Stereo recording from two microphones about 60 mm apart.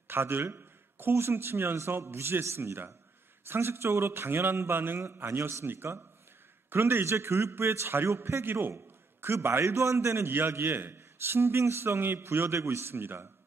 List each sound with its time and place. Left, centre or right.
0.1 s a man's voice: right